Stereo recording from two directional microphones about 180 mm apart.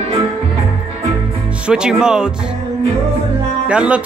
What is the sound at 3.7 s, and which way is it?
Speech, 5° right (ahead or behind).